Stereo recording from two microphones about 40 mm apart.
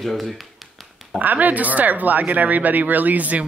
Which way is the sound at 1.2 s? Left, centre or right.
Right.